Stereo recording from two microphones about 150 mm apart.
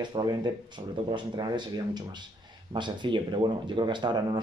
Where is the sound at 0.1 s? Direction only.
25° right (ahead or behind).